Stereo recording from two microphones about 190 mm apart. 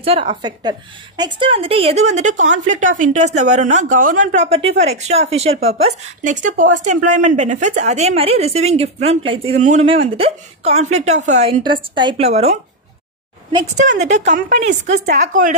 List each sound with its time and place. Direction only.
0.0 s a woman's voice: 30° right (ahead or behind)
11.6 s a woman's voice: 25° right (ahead or behind)
13.8 s a woman's voice: 40° right (ahead or behind)